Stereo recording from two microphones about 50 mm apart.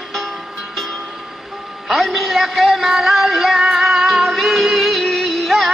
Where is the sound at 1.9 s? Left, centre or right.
Centre.